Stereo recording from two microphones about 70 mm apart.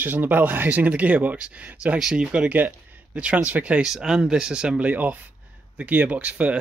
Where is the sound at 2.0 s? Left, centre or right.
Centre.